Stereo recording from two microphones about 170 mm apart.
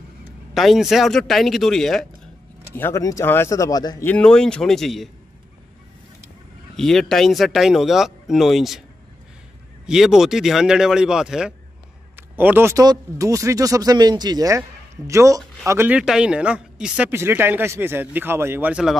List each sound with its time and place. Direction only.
0.6 s speech: centre (ahead or behind)
2.7 s speech: 15° left (ahead or behind)
4.0 s speech: 5° left (ahead or behind)
6.8 s speech: centre (ahead or behind)
9.8 s a man's voice: 5° right (ahead or behind)